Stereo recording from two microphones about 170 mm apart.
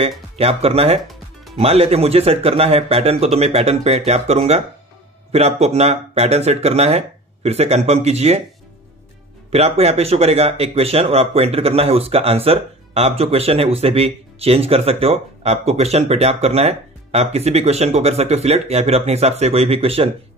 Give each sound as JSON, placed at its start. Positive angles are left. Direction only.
{"t": 0.4, "sound": "speech", "side_deg": -35}
{"t": 9.5, "sound": "speech", "side_deg": -35}